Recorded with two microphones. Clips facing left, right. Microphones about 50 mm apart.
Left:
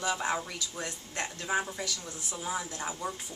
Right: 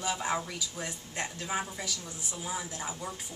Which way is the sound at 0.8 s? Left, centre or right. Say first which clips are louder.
Left 2 dB; centre.